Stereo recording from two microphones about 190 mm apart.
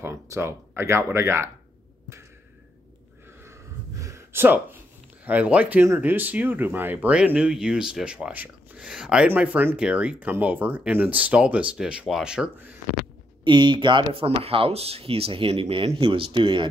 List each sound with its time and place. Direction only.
0.0 s speech: 15° right (ahead or behind)
3.4 s gasp: 15° right (ahead or behind)
5.2 s speech: 10° right (ahead or behind)
13.4 s speech: 25° right (ahead or behind)